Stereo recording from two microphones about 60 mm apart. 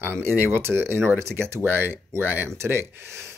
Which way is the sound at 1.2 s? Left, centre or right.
Right.